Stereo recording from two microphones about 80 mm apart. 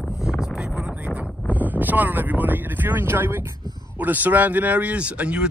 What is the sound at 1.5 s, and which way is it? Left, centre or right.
Speech, right.